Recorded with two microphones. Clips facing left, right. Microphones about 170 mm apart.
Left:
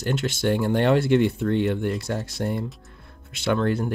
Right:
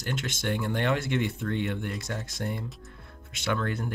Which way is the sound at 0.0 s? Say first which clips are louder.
Left 8 dB; 35° left (ahead or behind).